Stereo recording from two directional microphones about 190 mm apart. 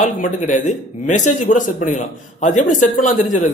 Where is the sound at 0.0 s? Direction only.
40° left (ahead or behind).